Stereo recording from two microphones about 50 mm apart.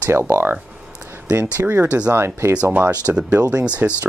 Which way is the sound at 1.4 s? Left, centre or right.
Right.